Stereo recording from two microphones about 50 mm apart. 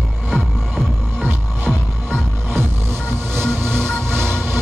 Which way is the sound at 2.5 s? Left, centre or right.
Right.